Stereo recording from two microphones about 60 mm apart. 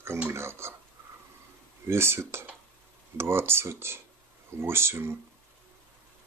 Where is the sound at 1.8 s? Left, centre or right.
Right.